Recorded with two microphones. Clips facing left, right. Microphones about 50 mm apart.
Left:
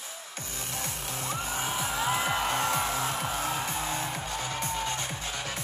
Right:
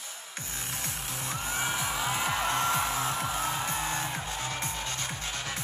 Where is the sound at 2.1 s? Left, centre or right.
Centre.